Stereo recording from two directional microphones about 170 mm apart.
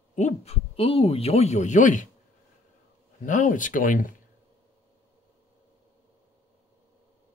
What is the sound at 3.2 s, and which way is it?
Speech, 50° left (ahead or behind).